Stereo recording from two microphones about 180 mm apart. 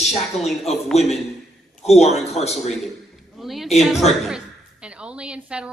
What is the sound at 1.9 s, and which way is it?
Speech, 35° left (ahead or behind).